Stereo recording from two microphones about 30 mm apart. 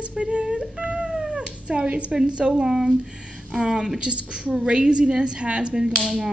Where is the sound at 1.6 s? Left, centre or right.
Right.